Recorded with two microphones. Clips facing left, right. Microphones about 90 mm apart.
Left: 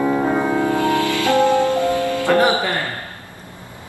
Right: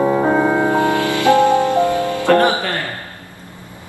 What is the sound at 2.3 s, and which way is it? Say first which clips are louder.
Music: right 3 dB; 15° left (ahead or behind).